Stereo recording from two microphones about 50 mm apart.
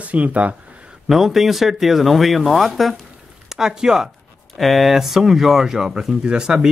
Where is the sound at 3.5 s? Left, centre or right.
Centre.